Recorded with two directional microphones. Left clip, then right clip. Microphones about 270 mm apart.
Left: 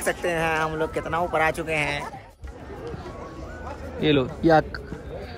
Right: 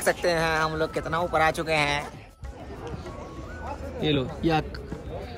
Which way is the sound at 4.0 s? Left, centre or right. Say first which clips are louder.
Left 5 dB; centre.